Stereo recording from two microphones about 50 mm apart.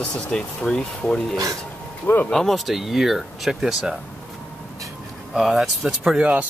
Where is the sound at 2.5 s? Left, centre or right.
Centre.